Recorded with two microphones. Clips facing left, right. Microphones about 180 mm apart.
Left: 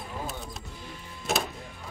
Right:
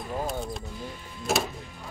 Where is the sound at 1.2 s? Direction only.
Centre (ahead or behind).